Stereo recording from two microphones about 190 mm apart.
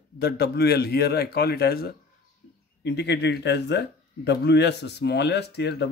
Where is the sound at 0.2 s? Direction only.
60° left (ahead or behind).